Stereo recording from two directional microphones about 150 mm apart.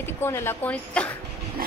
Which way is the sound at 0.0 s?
15° left (ahead or behind).